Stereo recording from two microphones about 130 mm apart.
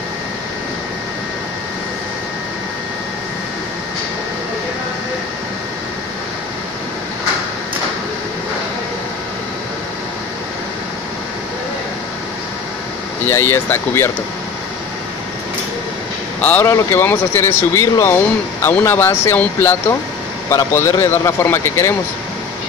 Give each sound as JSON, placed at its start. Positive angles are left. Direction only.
{"t": 13.2, "sound": "speech", "side_deg": 20}
{"t": 16.3, "sound": "speech", "side_deg": 10}